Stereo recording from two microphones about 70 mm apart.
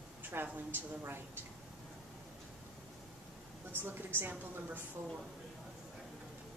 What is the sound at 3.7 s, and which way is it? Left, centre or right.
Speech, right.